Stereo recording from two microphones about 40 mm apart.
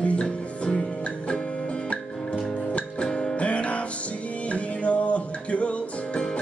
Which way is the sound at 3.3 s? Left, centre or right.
Left.